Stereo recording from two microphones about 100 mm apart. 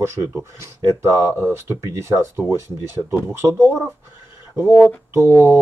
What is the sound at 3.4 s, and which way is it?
Speech, 40° right (ahead or behind).